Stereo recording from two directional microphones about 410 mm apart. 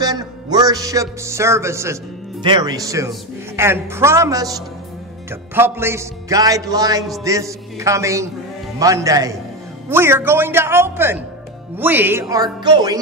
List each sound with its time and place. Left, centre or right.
0.0 s a man's voice: centre